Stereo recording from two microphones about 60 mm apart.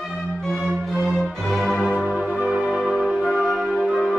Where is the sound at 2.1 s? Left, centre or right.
Centre.